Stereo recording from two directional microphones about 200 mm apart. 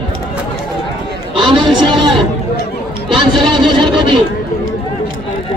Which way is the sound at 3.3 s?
25° right (ahead or behind).